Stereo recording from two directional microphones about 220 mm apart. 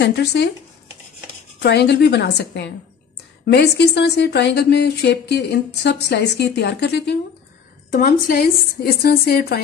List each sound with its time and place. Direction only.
0.0 s speech: 50° left (ahead or behind)
1.6 s speech: 50° left (ahead or behind)